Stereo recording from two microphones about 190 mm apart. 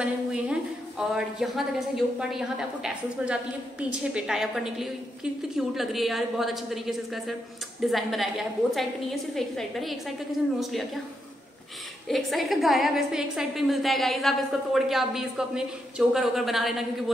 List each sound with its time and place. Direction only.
0.0 s a woman's voice: 5° right (ahead or behind)
12.1 s a woman's voice: centre (ahead or behind)